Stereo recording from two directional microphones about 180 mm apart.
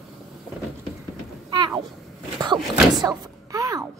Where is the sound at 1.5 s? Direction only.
25° right (ahead or behind).